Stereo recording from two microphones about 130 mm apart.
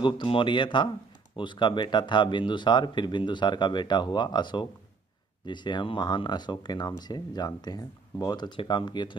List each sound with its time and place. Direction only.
0.0 s speech: 40° left (ahead or behind)